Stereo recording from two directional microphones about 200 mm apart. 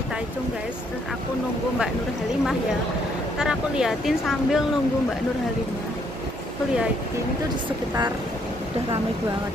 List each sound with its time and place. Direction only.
3.3 s speech: 5° right (ahead or behind)